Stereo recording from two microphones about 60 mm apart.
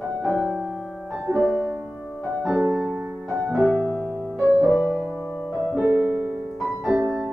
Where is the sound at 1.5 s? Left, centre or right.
Right.